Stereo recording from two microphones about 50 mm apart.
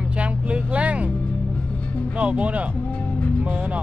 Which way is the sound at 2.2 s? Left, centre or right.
Right.